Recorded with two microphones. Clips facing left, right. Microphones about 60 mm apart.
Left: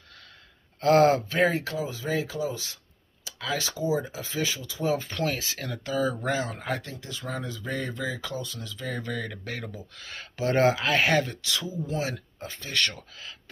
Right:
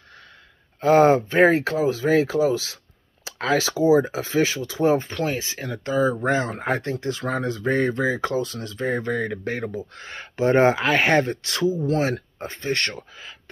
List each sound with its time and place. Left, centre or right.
0.7 s speech: centre
1.1 s speech: right
1.5 s speech: right
3.3 s speech: right
5.1 s speech: right
6.3 s speech: right
6.8 s speech: right
8.6 s speech: right
10.4 s speech: right
11.8 s speech: right
13.1 s speech: centre